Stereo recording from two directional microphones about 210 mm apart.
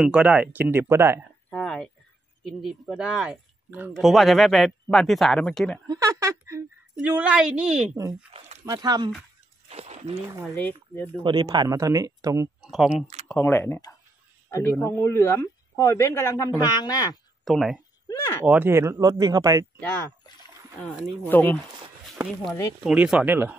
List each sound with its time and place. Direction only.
0.0 s speech: 5° right (ahead or behind)
1.5 s oink: 5° left (ahead or behind)
2.4 s speech: centre (ahead or behind)
5.9 s speech: 15° right (ahead or behind)
8.6 s speech: 20° right (ahead or behind)
9.7 s a sound: 30° right (ahead or behind)
10.4 s speech: 10° left (ahead or behind)
11.2 s speech: 20° right (ahead or behind)
12.7 s speech: centre (ahead or behind)
13.3 s speech: 10° left (ahead or behind)
17.5 s speech: centre (ahead or behind); by 19.6 s 15° right (ahead or behind)
19.8 s speech: 10° left (ahead or behind); by 23.5 s 10° right (ahead or behind)